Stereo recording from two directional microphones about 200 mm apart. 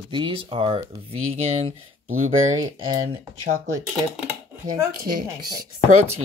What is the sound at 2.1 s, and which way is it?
Speech, 90° right.